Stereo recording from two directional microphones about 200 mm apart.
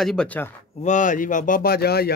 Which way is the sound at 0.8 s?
40° left (ahead or behind).